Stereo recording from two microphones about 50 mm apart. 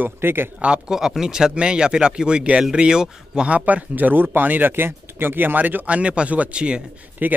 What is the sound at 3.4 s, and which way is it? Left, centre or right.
Speech, right.